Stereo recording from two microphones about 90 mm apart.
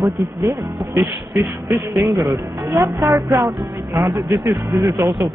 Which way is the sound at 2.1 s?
35° right (ahead or behind).